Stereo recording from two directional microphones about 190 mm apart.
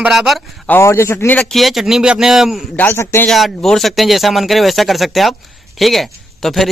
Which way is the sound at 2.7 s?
10° left (ahead or behind).